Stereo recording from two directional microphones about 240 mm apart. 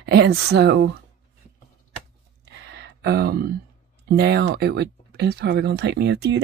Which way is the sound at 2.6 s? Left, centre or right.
Right.